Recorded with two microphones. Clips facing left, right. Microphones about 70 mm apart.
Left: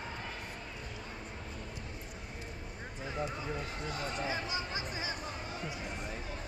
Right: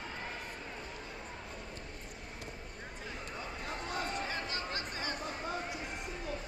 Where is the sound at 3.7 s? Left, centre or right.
Right.